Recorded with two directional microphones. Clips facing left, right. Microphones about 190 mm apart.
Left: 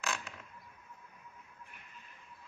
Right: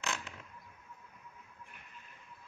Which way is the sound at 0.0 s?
25° right (ahead or behind).